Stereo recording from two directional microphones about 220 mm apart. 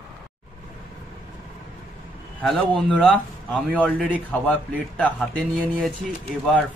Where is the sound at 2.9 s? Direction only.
5° left (ahead or behind).